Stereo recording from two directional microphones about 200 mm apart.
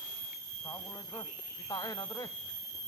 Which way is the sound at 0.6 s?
15° left (ahead or behind).